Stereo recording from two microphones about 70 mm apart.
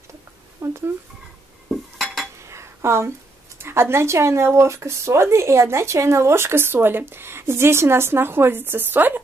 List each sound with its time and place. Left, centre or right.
0.6 s a sound: right
1.7 s cutlery: centre
2.4 s dishes: right
3.5 s speech: right